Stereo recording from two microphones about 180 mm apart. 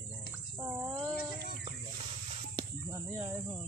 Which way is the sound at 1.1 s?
60° left (ahead or behind).